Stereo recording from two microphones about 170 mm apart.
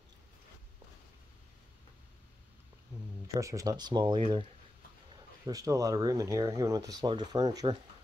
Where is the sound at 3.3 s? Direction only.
20° right (ahead or behind).